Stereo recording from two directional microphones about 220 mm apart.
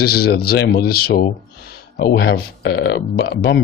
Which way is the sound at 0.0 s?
45° left (ahead or behind).